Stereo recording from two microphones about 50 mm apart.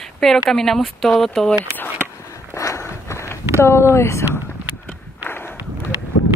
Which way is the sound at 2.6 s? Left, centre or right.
Left.